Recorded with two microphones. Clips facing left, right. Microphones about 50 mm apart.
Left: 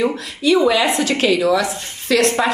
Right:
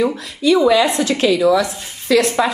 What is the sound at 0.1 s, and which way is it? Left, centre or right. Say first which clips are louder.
Speech: right 1 dB; left.